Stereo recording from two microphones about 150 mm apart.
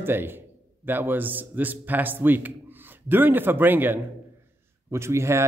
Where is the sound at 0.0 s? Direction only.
15° right (ahead or behind).